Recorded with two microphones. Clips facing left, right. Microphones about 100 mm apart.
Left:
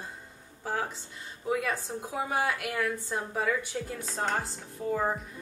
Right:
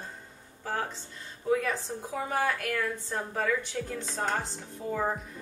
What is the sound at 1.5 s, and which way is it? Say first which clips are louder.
A woman's voice: right 2 dB; 5° left (ahead or behind).